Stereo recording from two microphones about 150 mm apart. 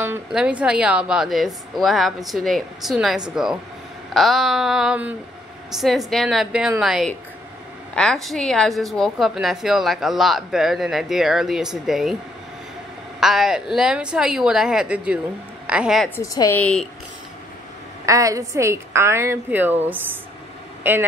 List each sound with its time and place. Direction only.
0.3 s a woman's voice: 5° right (ahead or behind)
13.2 s a woman's voice: centre (ahead or behind)
16.2 s a woman's voice: 20° left (ahead or behind)
18.0 s a woman's voice: 20° right (ahead or behind)
20.8 s speech: 15° right (ahead or behind)